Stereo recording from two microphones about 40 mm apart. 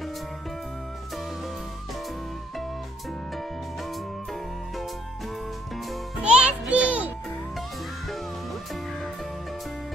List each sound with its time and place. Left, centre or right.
6.1 s music: right